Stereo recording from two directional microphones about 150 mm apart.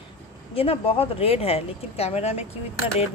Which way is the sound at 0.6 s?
40° left (ahead or behind).